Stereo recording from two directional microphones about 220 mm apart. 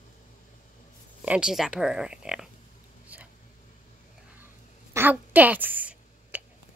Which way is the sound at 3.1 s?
5° right (ahead or behind).